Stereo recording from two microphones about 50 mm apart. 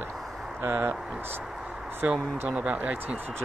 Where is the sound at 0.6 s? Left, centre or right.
Right.